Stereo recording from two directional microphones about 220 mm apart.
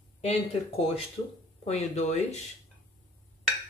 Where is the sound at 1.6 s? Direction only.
30° left (ahead or behind).